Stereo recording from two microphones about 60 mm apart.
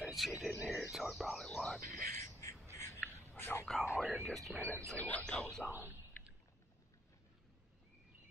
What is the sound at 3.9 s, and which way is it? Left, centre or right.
Speech, right.